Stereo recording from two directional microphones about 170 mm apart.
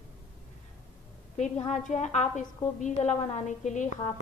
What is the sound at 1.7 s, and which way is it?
A woman's voice, 45° left (ahead or behind).